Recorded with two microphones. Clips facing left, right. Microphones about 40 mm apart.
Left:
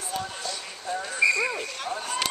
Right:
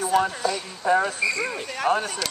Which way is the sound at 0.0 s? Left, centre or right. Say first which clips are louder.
Right 11 dB; right.